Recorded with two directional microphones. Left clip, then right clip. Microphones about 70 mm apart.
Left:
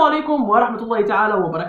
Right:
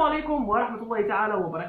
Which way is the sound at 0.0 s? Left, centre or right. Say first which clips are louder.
Left 8 dB; centre.